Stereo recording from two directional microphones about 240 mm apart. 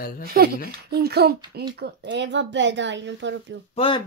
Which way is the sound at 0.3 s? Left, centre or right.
Right.